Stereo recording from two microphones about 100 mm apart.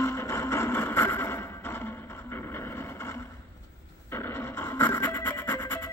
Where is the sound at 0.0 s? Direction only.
25° left (ahead or behind).